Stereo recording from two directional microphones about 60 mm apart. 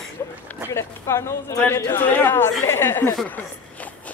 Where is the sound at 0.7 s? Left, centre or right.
Left.